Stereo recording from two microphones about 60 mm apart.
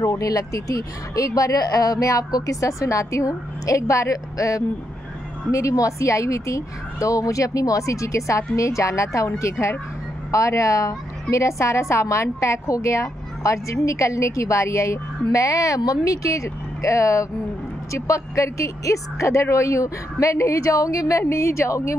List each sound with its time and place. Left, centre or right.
0.1 s a woman's voice: left
21.3 s a woman's voice: left